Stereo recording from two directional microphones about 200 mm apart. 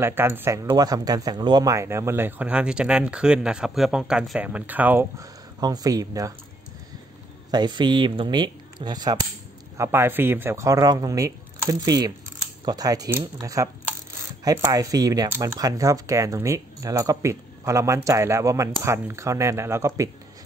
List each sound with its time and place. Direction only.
0.0 s speech: 10° right (ahead or behind)
7.5 s speech: 20° right (ahead or behind)